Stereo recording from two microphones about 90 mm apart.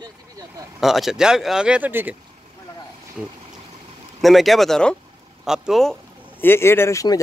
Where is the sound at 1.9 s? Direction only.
20° right (ahead or behind).